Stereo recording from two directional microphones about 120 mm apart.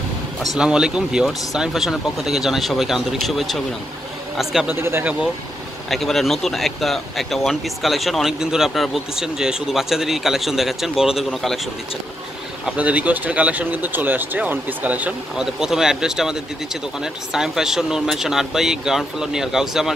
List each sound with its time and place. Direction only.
0.4 s speech: 5° right (ahead or behind)
4.6 s speech: 15° right (ahead or behind)
5.9 s speech: centre (ahead or behind)
12.6 s speech: 10° right (ahead or behind)